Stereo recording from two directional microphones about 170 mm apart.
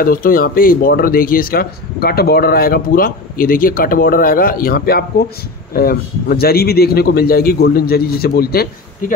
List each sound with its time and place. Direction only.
0.0 s speech: 55° left (ahead or behind)